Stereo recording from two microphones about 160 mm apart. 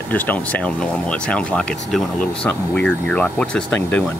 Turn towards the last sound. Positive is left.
turn(degrees=10)  # may be behind; listen again after turning